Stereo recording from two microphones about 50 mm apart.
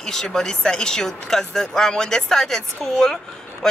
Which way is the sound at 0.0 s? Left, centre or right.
Centre.